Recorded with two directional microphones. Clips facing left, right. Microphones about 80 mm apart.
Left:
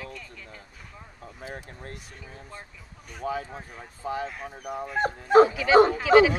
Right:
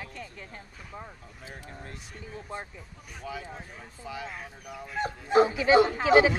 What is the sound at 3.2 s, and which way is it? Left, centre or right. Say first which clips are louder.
Speech: left 7 dB; left.